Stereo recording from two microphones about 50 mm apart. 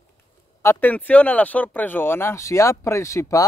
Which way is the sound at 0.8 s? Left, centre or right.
Left.